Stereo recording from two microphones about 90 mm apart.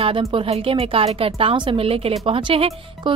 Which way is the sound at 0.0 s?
85° right.